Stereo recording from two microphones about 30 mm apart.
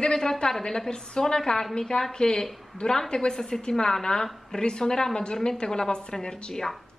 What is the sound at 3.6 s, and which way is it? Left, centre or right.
A woman's voice, left.